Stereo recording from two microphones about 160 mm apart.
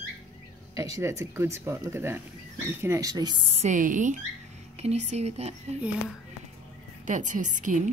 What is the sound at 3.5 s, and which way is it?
A woman's voice, 50° right (ahead or behind).